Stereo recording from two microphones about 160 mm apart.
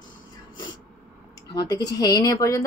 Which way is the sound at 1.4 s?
25° left (ahead or behind).